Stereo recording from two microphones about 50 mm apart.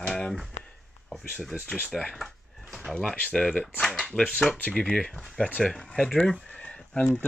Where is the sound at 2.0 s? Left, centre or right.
Centre.